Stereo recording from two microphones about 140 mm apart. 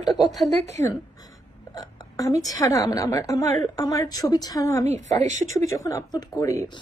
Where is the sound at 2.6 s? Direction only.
25° left (ahead or behind).